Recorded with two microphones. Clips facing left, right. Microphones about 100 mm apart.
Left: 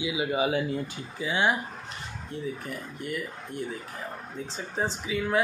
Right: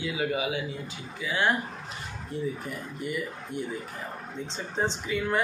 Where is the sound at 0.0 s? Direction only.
15° left (ahead or behind).